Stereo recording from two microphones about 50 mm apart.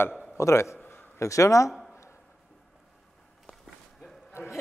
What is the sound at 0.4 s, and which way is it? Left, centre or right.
Speech, left.